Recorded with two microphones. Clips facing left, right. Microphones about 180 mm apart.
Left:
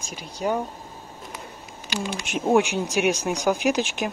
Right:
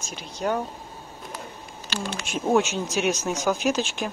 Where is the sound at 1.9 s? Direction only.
15° left (ahead or behind).